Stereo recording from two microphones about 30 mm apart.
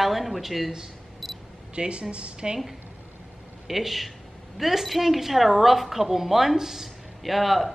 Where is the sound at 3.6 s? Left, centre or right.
Centre.